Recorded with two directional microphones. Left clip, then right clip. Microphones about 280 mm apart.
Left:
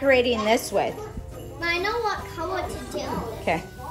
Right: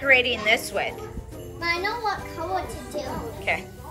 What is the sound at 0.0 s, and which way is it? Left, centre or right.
Speech, centre.